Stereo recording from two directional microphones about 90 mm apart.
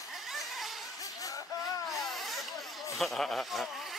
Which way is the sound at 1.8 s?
Centre (ahead or behind).